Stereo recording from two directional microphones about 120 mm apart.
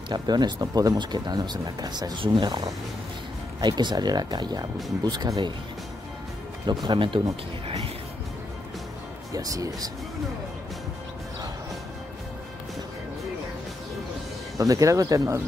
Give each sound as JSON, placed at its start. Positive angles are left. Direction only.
{"t": 0.1, "sound": "speech", "side_deg": -35}
{"t": 3.6, "sound": "speech", "side_deg": -35}
{"t": 6.6, "sound": "speech", "side_deg": -35}
{"t": 9.3, "sound": "speech", "side_deg": -30}
{"t": 14.6, "sound": "speech", "side_deg": -25}